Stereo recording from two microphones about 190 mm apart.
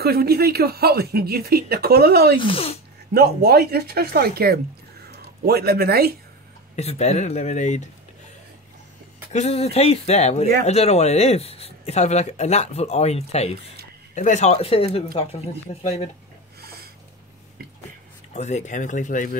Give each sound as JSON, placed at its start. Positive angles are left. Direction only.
{"t": 0.0, "sound": "speech", "side_deg": -55}
{"t": 2.3, "sound": "speech", "side_deg": 30}
{"t": 3.1, "sound": "speech", "side_deg": -55}
{"t": 6.7, "sound": "speech", "side_deg": 35}
{"t": 9.3, "sound": "speech", "side_deg": 35}
{"t": 16.6, "sound": "snort", "side_deg": -55}
{"t": 18.3, "sound": "speech", "side_deg": 35}